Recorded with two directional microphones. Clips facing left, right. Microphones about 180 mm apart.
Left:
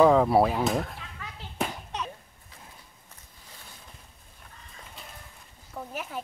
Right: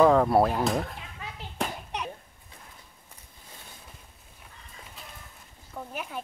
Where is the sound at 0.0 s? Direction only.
5° left (ahead or behind).